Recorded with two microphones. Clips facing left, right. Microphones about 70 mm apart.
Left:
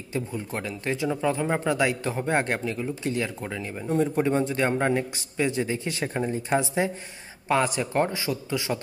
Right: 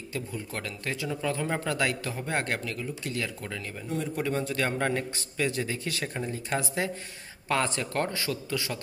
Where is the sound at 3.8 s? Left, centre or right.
Left.